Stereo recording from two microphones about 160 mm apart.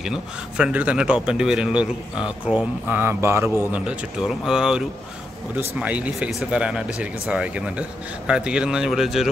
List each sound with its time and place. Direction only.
0.0 s a man's voice: 5° right (ahead or behind)